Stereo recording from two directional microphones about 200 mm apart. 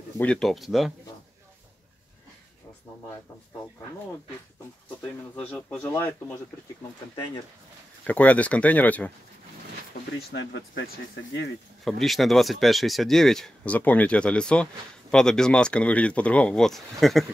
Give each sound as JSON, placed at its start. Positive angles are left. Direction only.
{"t": 0.2, "sound": "speech", "side_deg": 5}
{"t": 5.0, "sound": "speech", "side_deg": 10}
{"t": 8.1, "sound": "speech", "side_deg": 5}
{"t": 9.9, "sound": "a sound", "side_deg": 50}
{"t": 10.3, "sound": "speech", "side_deg": 60}
{"t": 11.8, "sound": "speech", "side_deg": 0}